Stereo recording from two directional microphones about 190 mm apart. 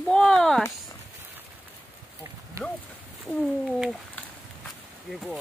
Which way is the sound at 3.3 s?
Centre (ahead or behind).